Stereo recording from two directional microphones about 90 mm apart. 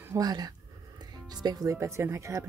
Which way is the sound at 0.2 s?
45° right (ahead or behind).